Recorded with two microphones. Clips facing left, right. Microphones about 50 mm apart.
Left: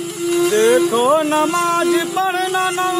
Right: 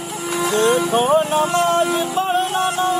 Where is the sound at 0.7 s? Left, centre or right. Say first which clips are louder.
Left 3 dB; left.